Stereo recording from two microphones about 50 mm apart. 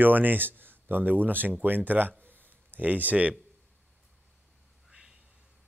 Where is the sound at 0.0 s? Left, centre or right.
Right.